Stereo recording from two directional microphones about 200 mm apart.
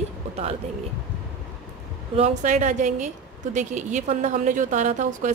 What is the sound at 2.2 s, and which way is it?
A woman's voice, 40° right (ahead or behind).